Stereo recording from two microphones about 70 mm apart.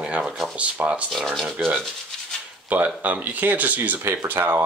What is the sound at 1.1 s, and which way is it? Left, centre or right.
Speech, centre.